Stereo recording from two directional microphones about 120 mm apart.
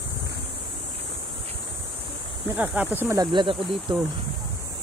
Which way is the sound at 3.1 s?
45° right (ahead or behind).